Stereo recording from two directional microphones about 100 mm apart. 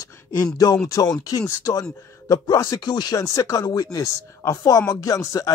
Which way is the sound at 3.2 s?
30° left (ahead or behind).